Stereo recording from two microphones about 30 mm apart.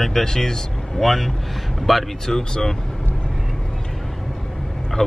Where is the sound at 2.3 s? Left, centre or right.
Centre.